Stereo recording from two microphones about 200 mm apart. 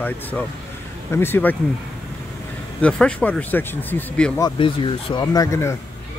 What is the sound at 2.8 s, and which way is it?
Speech, 5° left (ahead or behind).